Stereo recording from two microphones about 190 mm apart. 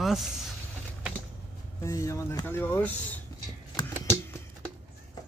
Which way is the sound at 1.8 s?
15° left (ahead or behind).